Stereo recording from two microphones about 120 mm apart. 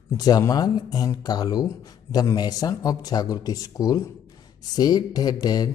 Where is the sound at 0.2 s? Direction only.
30° left (ahead or behind).